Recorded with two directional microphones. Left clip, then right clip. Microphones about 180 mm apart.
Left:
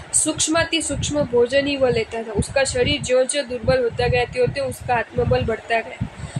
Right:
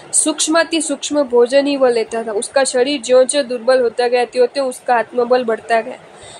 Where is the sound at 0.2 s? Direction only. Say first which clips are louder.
Right 5 dB; 25° right (ahead or behind).